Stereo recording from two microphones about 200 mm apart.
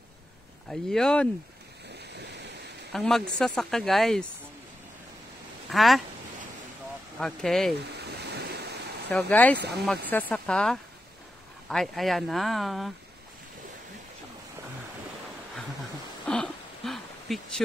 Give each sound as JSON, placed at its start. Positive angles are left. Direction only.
{"t": 0.7, "sound": "speech", "side_deg": 5}
{"t": 2.9, "sound": "speech", "side_deg": 0}
{"t": 5.7, "sound": "speech", "side_deg": 0}
{"t": 7.2, "sound": "speech", "side_deg": 0}
{"t": 8.4, "sound": "waves", "side_deg": -55}
{"t": 9.1, "sound": "speech", "side_deg": 10}
{"t": 9.6, "sound": "speech", "side_deg": -55}
{"t": 10.0, "sound": "speech", "side_deg": 10}
{"t": 16.3, "sound": "a sound", "side_deg": 0}